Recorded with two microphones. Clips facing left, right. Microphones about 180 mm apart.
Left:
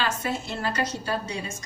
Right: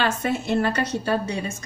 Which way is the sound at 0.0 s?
60° right (ahead or behind).